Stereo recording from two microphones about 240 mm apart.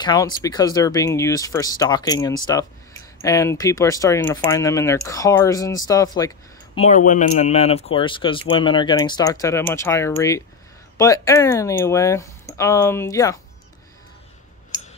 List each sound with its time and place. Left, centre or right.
0.0 s speech: centre
6.9 s speech: left; by 13.4 s centre